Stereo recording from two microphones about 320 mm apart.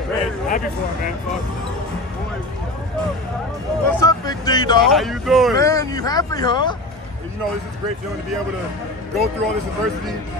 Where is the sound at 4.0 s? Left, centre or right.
Centre.